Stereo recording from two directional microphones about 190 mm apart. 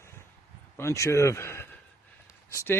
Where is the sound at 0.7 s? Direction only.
15° left (ahead or behind).